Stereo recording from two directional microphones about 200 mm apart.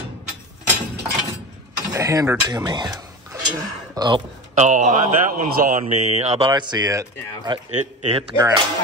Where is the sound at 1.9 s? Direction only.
15° right (ahead or behind).